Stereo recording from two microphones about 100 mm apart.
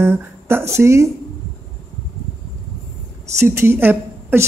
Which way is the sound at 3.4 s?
25° right (ahead or behind).